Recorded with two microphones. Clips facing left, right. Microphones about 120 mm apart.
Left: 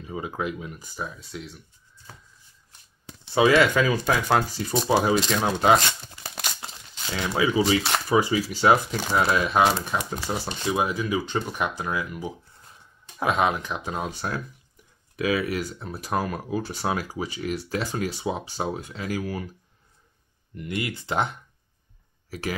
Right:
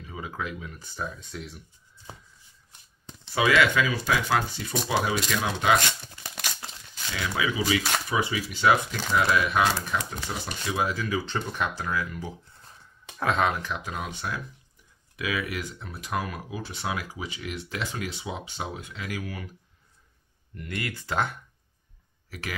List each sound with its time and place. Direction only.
0.0 s speech: 25° left (ahead or behind); by 1.6 s centre (ahead or behind)
3.3 s speech: 30° left (ahead or behind)
3.7 s speech: 40° left (ahead or behind)
6.2 s crumpling: 25° left (ahead or behind)
7.1 s speech: 30° left (ahead or behind)
13.9 s speech: 35° left (ahead or behind)
20.5 s speech: 15° left (ahead or behind)